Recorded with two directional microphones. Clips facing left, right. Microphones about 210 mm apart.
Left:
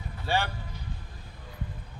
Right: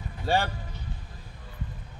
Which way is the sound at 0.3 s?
45° right (ahead or behind).